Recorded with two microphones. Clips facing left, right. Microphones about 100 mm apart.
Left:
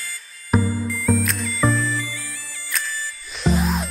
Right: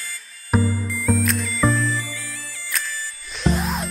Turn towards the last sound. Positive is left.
turn(degrees=0)  # may be behind; listen again after turning